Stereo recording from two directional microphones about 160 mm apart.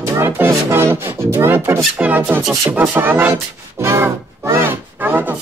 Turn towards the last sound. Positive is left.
turn(degrees=-10)  # may be behind; listen again after turning